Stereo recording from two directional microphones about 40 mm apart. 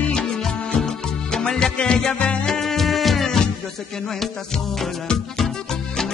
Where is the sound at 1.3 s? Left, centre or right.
Centre.